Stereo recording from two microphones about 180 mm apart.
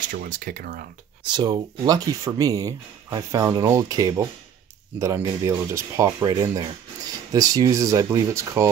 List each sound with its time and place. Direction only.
0.1 s speech: 50° right (ahead or behind)
1.2 s speech: 25° right (ahead or behind)